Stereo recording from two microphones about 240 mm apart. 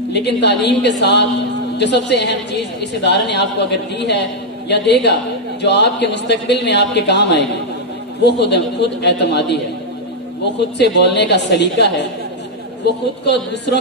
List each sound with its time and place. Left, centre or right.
0.1 s a woman's voice: left
10.8 s a woman's voice: left
13.2 s a woman's voice: left